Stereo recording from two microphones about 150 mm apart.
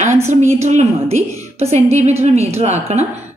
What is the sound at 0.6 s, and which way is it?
A woman's voice, 50° right (ahead or behind).